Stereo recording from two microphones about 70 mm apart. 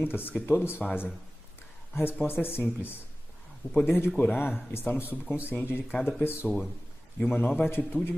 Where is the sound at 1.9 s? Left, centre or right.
Left.